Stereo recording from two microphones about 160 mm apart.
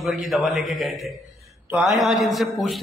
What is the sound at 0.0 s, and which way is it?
A man's voice, centre (ahead or behind).